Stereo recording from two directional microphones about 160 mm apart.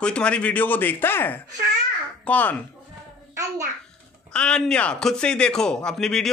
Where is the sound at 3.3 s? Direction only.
20° right (ahead or behind).